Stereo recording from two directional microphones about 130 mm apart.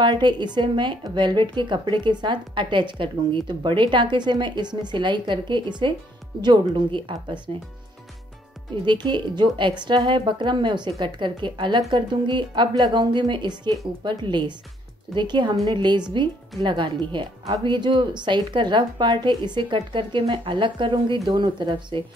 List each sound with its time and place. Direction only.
0.0 s a woman's voice: 35° right (ahead or behind)
8.8 s a woman's voice: 35° right (ahead or behind)